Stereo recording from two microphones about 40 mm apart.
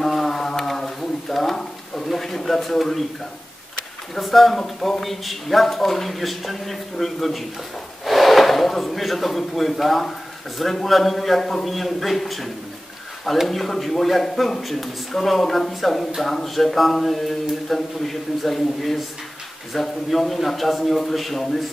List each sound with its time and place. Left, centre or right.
0.0 s mantra: centre
4.1 s speech: centre
13.5 s speech: centre